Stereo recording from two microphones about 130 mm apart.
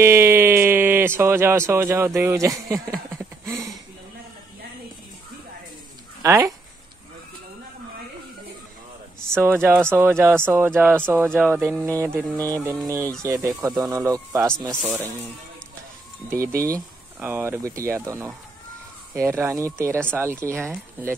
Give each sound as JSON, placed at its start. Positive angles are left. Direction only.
{"t": 0.0, "sound": "speech", "side_deg": -20}
{"t": 6.2, "sound": "speech", "side_deg": -25}
{"t": 9.3, "sound": "speech", "side_deg": -20}
{"t": 16.3, "sound": "speech", "side_deg": -25}